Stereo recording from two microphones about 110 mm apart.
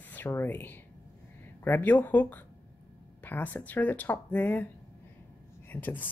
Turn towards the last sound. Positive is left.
turn(degrees=15)  # may be behind; listen again after turning